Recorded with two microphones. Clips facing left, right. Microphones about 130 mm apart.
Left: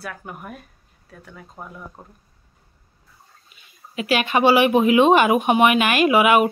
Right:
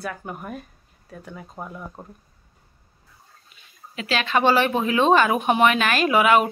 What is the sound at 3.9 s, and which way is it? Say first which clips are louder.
Speech: left 3 dB; 10° left (ahead or behind).